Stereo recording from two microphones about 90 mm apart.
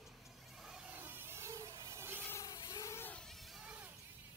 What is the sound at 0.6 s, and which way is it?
Insect, 10° right (ahead or behind).